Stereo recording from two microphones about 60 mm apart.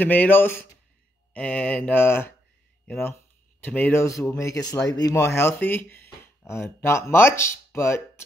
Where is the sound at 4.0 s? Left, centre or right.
Left.